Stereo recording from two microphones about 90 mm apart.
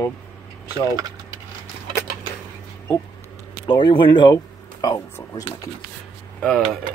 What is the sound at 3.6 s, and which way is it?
Speech, 60° left (ahead or behind).